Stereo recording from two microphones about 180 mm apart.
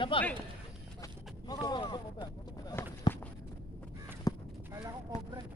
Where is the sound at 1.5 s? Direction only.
25° left (ahead or behind).